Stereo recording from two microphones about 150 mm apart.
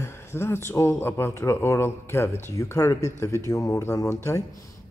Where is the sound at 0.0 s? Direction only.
15° left (ahead or behind).